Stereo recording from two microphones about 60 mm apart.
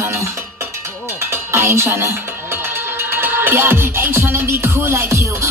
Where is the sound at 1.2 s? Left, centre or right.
Right.